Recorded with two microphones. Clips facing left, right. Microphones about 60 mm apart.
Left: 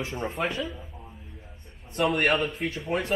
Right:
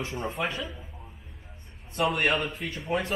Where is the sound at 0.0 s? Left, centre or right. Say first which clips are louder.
Left 1 dB; centre.